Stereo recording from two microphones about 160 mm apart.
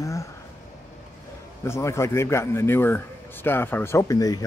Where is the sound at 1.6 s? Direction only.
15° left (ahead or behind).